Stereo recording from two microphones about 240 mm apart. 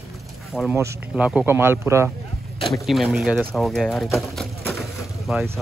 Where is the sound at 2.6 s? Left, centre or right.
Left.